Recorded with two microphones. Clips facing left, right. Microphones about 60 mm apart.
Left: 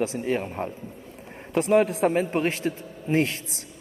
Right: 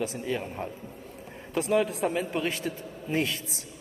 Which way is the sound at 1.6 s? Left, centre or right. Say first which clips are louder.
Left 5 dB; left.